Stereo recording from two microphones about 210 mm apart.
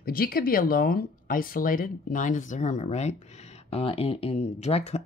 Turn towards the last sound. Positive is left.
turn(degrees=30)  # may be behind; listen again after turning